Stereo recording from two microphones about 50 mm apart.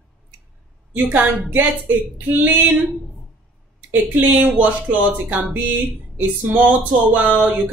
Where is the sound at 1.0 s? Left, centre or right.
Right.